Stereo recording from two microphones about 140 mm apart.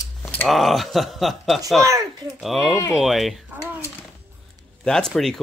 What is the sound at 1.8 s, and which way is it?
Speech, 20° right (ahead or behind).